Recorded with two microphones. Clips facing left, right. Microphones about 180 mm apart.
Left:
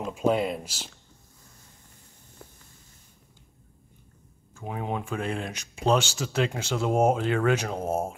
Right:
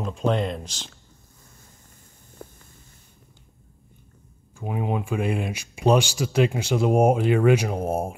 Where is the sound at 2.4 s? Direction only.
55° right (ahead or behind).